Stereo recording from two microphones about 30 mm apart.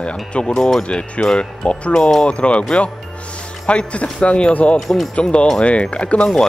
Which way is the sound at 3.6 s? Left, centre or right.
Left.